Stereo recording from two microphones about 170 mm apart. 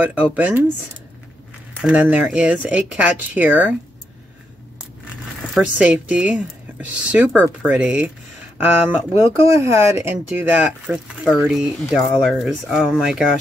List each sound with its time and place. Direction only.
0.0 s speech: 10° right (ahead or behind)
1.8 s speech: 5° right (ahead or behind)
5.5 s speech: 5° right (ahead or behind)